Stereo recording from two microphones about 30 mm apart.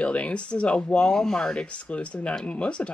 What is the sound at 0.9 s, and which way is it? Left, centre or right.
Speech, left.